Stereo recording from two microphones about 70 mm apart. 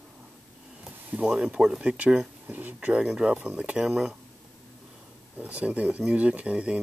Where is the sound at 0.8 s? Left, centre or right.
Right.